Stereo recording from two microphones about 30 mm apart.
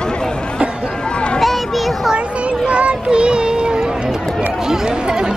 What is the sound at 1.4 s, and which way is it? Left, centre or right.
Children playing, centre.